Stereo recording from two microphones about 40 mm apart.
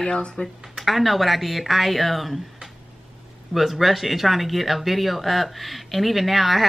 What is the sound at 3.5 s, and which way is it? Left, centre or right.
Speech, centre.